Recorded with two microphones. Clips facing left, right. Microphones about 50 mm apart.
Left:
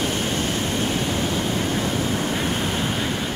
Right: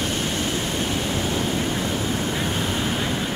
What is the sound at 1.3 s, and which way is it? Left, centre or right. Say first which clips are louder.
Vehicle: left 1 dB; centre.